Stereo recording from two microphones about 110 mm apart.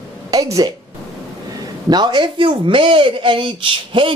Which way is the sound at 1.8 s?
40° right (ahead or behind).